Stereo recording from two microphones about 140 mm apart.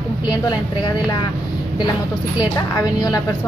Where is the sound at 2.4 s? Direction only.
30° left (ahead or behind).